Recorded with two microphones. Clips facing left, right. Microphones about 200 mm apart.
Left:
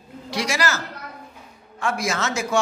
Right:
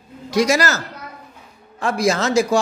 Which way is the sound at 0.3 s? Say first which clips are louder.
Right 7 dB; 45° right (ahead or behind).